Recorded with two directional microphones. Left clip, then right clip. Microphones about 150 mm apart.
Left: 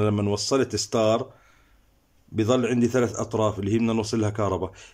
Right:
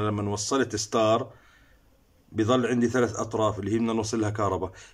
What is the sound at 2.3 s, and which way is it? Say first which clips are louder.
Speech: left 1 dB; 10° left (ahead or behind).